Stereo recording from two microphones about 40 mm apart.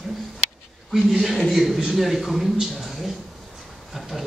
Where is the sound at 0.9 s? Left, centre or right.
Centre.